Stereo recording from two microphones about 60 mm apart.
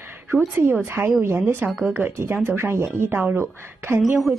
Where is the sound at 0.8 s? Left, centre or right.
Right.